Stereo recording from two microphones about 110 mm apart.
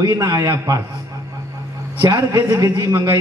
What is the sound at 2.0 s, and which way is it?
A man's voice, 30° right (ahead or behind).